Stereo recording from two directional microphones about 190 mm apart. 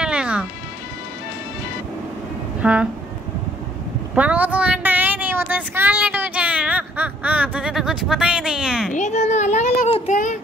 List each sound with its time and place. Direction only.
0.0 s music: 5° right (ahead or behind)
2.6 s music: 5° right (ahead or behind)
4.1 s a sound: 5° right (ahead or behind)
8.9 s a child's voice: 40° left (ahead or behind)